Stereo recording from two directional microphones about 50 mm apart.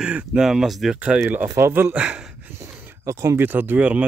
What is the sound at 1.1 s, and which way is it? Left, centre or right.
Speech, right.